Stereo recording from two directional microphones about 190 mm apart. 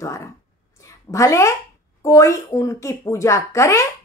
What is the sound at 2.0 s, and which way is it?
A woman's voice, 15° left (ahead or behind).